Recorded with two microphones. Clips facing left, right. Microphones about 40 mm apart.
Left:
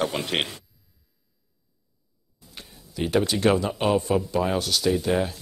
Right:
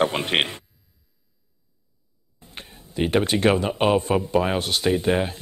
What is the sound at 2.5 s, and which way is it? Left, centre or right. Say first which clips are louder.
Speech: right 5 dB; right.